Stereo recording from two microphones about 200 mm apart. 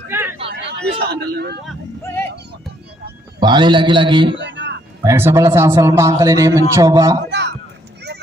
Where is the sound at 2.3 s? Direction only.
55° right (ahead or behind).